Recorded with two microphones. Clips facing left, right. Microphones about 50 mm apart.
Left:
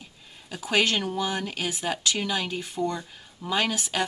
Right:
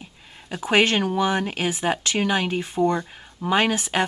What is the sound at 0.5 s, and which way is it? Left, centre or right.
Speech, right.